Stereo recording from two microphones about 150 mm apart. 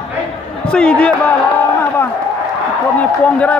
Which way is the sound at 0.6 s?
5° left (ahead or behind).